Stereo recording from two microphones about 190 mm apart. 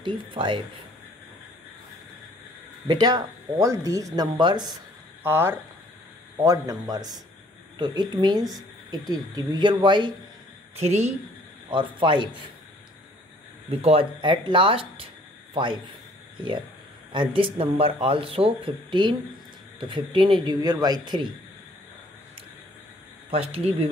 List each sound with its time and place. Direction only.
0.0 s speech: 25° right (ahead or behind)
2.9 s speech: 20° right (ahead or behind)
5.2 s speech: 10° right (ahead or behind)
10.8 s speech: 35° right (ahead or behind)
11.7 s speech: 25° right (ahead or behind)
13.7 s a man's voice: 30° right (ahead or behind)
17.1 s speech: 25° right (ahead or behind)
23.3 s speech: 30° right (ahead or behind)